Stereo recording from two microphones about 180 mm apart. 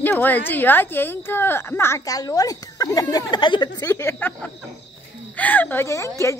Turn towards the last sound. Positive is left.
turn(degrees=15)  # may be behind; listen again after turning